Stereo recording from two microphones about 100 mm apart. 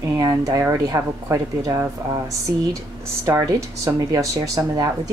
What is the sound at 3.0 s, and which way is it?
Speech, 30° right (ahead or behind).